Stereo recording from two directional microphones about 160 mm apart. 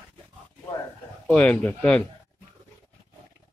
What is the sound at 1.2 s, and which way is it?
Speech, 10° left (ahead or behind).